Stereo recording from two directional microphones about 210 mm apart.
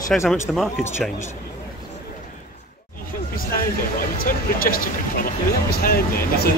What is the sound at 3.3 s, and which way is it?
Speech, 45° left (ahead or behind).